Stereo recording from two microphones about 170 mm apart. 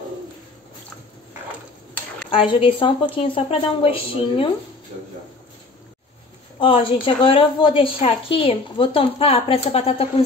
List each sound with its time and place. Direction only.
2.3 s a woman's voice: 30° left (ahead or behind)
6.6 s a woman's voice: 30° left (ahead or behind)